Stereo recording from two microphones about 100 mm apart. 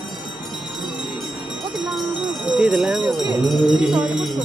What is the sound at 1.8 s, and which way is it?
Jingle bell, 5° right (ahead or behind).